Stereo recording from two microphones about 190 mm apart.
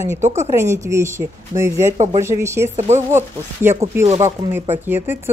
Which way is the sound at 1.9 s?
35° right (ahead or behind).